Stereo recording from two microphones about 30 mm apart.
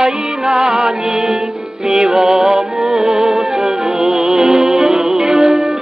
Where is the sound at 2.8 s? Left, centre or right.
Centre.